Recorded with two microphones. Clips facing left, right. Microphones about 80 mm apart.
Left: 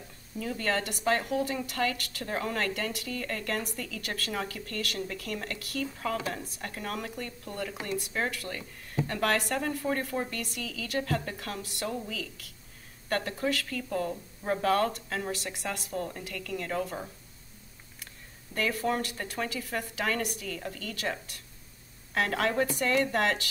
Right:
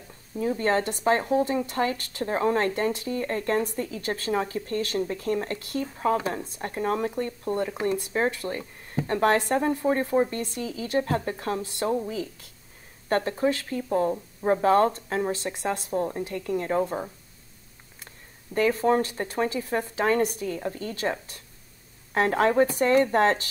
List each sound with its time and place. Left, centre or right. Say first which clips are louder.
0.4 s speech: right 7 dB; right
18.5 s speech: right 8 dB; right